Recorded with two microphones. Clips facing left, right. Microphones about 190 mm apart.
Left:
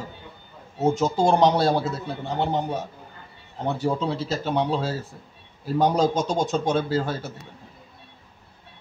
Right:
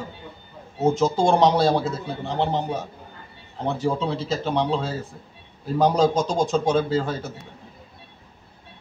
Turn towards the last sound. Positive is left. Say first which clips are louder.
# right 2 dB
turn(degrees=0)  # may be behind; listen again after turning